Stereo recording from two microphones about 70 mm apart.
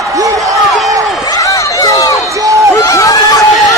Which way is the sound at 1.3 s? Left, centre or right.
Left.